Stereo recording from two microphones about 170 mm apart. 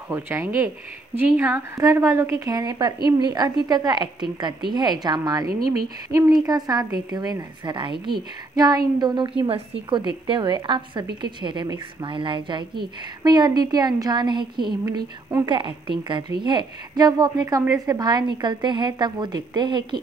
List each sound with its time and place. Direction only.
0.1 s a woman's voice: 15° right (ahead or behind)